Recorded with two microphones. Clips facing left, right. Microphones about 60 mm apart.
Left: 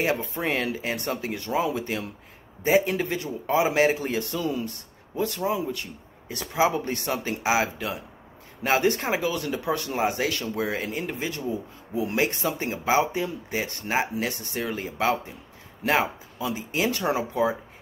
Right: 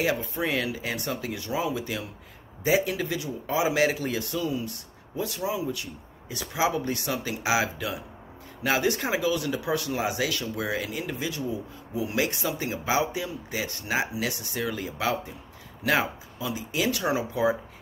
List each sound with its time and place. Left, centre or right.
0.0 s a man's voice: left